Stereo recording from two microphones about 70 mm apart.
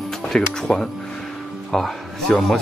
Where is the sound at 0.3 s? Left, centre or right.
Centre.